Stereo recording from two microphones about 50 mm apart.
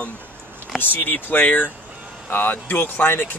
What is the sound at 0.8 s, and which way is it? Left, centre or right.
Speech, left.